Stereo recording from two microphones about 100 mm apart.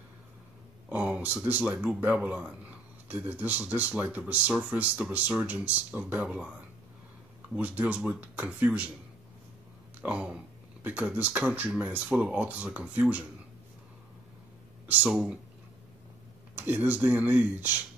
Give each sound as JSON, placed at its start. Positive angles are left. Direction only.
{"t": 0.8, "sound": "speech", "side_deg": -15}
{"t": 7.5, "sound": "speech", "side_deg": -15}
{"t": 10.0, "sound": "speech", "side_deg": -10}
{"t": 14.9, "sound": "speech", "side_deg": -15}
{"t": 16.5, "sound": "speech", "side_deg": -20}